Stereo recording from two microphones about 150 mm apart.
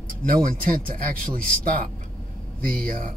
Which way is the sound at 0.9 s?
70° right (ahead or behind).